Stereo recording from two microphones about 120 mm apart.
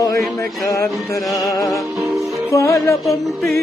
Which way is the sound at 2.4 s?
25° left (ahead or behind).